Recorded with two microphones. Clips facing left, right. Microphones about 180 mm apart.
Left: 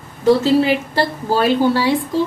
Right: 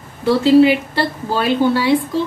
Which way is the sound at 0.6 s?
40° left (ahead or behind).